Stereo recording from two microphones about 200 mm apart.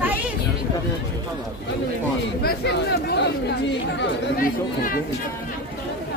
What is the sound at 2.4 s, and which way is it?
Speech, 50° left (ahead or behind).